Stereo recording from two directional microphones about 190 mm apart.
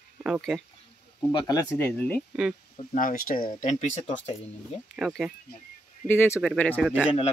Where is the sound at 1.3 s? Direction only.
20° left (ahead or behind).